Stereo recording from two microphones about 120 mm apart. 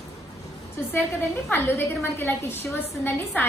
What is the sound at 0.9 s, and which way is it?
A woman's voice, 20° left (ahead or behind).